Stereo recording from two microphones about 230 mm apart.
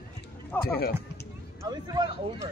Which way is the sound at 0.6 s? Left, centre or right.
Left.